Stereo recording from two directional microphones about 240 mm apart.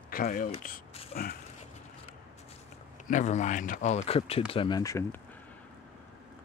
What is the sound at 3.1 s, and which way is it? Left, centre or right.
Speech, left.